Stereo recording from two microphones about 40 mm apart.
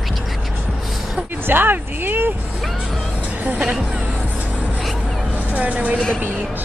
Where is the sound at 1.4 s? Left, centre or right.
Right.